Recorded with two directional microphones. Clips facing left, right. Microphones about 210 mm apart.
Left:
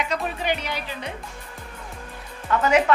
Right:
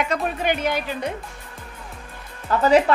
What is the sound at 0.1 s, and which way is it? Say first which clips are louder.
A woman's voice: right 3 dB; 50° right (ahead or behind).